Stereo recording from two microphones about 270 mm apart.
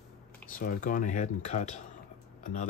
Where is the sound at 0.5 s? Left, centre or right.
Left.